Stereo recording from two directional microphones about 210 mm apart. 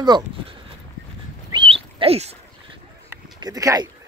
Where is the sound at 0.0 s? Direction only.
20° right (ahead or behind).